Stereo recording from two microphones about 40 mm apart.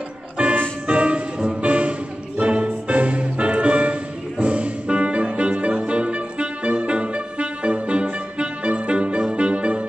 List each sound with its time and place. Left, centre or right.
0.4 s music: right